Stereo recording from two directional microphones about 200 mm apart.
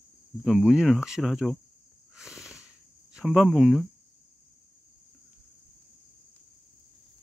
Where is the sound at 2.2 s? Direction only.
Centre (ahead or behind).